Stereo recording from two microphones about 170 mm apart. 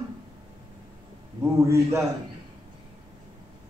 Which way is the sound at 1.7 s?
15° right (ahead or behind).